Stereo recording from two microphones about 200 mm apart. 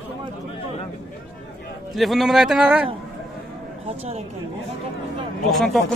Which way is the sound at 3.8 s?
30° right (ahead or behind).